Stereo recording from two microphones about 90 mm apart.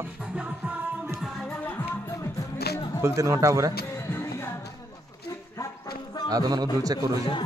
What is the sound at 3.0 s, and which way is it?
Speech, 35° right (ahead or behind).